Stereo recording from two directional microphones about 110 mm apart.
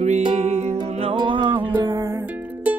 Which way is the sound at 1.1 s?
45° right (ahead or behind).